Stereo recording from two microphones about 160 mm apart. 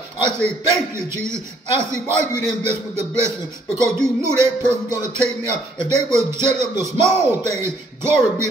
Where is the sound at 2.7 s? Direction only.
15° right (ahead or behind).